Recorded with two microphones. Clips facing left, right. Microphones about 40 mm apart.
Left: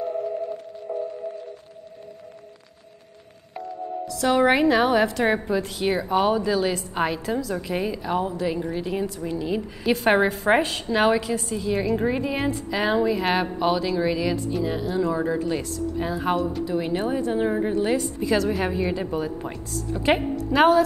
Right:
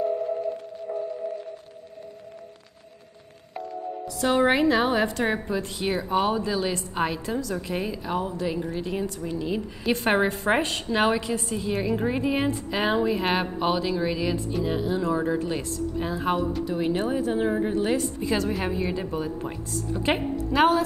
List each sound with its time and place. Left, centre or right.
4.1 s a woman's voice: centre
4.4 s a woman's voice: centre